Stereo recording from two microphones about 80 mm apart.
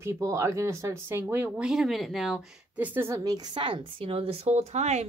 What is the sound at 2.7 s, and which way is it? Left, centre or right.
Speech, right.